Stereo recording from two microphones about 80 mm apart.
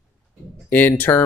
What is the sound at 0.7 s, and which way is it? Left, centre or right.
Speech, left.